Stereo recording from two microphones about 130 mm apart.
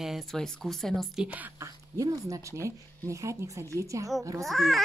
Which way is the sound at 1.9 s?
25° right (ahead or behind).